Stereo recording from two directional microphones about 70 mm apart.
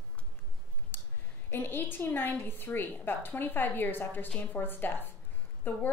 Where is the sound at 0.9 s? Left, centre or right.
Left.